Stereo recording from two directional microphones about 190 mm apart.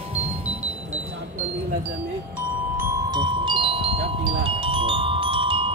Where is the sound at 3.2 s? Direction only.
25° right (ahead or behind).